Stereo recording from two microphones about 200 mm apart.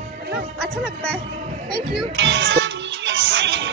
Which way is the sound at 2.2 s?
65° right (ahead or behind).